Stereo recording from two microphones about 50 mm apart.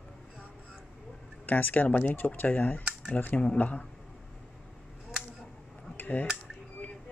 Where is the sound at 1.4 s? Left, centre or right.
Left.